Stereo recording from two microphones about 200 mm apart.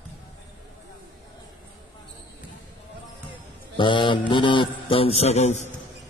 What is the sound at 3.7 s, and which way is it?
Mantra, 25° left (ahead or behind).